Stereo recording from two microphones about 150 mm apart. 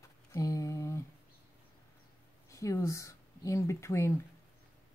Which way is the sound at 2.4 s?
20° left (ahead or behind).